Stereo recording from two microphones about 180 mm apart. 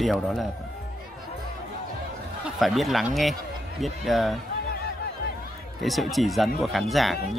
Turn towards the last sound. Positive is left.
turn(degrees=0)  # may be behind; listen again after turning